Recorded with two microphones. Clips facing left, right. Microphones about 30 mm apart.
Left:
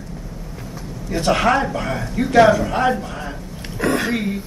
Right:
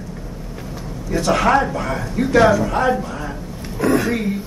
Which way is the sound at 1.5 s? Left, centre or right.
Centre.